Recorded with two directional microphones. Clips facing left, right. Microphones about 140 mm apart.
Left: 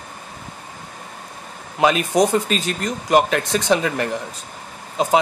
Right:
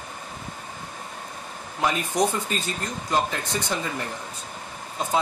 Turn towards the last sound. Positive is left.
turn(degrees=90)